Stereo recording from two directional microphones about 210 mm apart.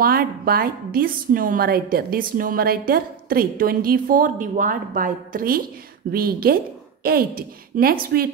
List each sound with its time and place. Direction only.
0.0 s a woman's voice: 45° right (ahead or behind)